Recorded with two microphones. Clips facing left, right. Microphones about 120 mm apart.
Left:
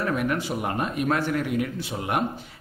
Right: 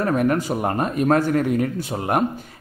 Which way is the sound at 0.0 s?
40° right (ahead or behind).